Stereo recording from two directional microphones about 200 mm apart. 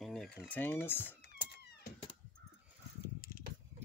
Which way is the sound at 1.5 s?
50° left (ahead or behind).